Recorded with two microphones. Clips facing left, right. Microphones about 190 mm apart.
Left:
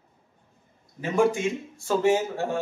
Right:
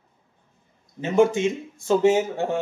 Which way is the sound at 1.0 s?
20° right (ahead or behind).